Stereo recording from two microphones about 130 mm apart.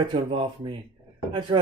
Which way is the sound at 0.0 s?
40° right (ahead or behind).